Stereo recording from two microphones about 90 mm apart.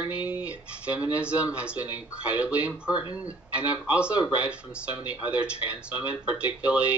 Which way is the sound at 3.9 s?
15° right (ahead or behind).